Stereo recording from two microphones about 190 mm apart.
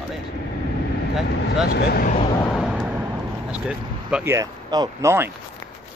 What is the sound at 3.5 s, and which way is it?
Speech, 5° right (ahead or behind).